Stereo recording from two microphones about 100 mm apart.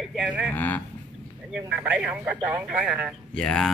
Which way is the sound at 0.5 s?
15° left (ahead or behind).